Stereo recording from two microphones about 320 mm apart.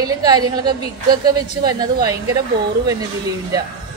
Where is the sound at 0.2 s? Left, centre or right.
Centre.